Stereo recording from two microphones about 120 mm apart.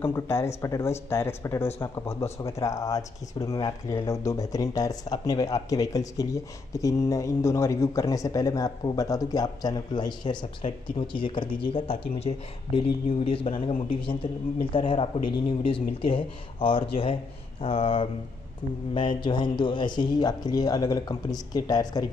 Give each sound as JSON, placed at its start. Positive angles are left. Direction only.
{"t": 0.0, "sound": "speech", "side_deg": 20}